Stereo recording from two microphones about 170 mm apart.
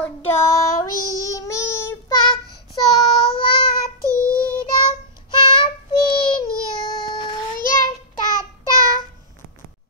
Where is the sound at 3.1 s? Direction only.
30° left (ahead or behind).